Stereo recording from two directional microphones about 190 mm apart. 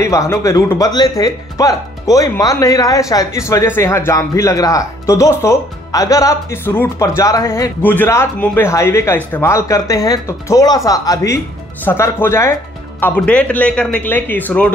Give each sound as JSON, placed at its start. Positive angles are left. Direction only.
{"t": 0.0, "sound": "speech", "side_deg": 15}